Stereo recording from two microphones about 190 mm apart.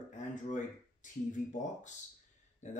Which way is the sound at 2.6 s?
40° left (ahead or behind).